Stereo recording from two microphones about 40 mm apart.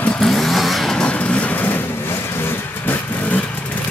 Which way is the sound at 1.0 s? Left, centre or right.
Left.